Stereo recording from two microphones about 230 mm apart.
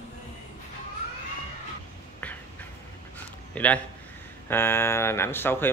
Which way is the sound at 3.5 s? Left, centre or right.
Centre.